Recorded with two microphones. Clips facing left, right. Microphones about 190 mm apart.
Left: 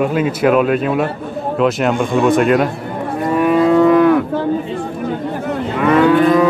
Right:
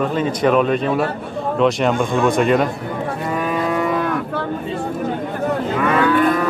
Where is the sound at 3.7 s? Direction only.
65° left (ahead or behind).